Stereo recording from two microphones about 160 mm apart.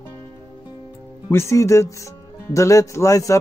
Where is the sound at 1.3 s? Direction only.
20° left (ahead or behind).